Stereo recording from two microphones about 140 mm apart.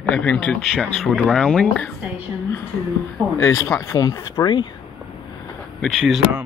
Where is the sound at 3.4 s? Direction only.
20° left (ahead or behind).